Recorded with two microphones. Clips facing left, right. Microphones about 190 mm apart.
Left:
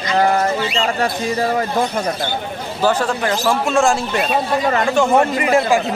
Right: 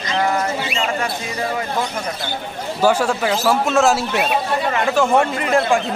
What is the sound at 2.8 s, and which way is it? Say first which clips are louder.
Speech: right 1 dB; 10° right (ahead or behind).